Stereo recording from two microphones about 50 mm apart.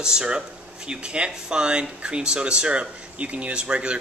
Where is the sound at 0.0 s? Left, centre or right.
Centre.